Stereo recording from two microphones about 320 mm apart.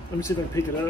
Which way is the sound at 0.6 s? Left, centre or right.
Centre.